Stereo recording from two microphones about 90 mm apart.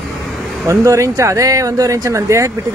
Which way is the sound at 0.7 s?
35° right (ahead or behind).